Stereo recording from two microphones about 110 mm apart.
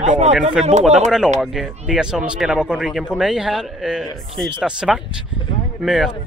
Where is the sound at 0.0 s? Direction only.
90° right.